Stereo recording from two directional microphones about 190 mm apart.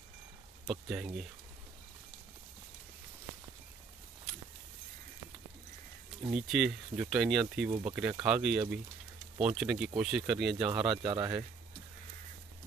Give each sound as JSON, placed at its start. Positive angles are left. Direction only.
{"t": 0.7, "sound": "speech", "side_deg": -5}
{"t": 6.3, "sound": "speech", "side_deg": 0}
{"t": 11.0, "sound": "speech", "side_deg": -20}